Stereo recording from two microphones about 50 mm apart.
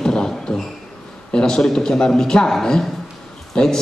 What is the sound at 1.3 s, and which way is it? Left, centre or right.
A man's voice, centre.